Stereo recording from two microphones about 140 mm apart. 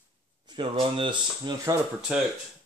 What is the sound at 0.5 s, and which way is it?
Speech, 35° right (ahead or behind).